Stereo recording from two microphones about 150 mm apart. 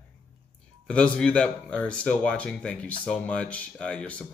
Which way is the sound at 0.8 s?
5° left (ahead or behind).